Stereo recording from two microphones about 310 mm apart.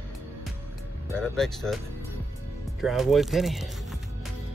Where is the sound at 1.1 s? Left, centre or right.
Centre.